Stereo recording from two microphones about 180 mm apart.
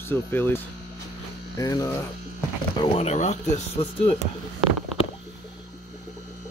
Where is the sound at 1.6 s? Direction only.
20° left (ahead or behind).